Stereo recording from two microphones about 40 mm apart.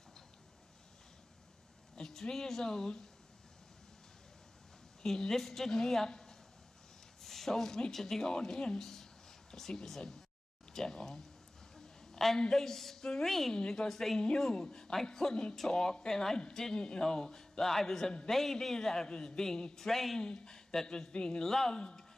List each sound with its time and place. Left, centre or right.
2.0 s speech: centre
5.0 s a man's voice: centre
11.7 s a sound: centre
12.4 s a man's voice: centre
13.3 s a woman's voice: centre
13.6 s a man's voice: centre
14.2 s a man's voice: left; by 20.2 s centre
20.2 s a man's voice: left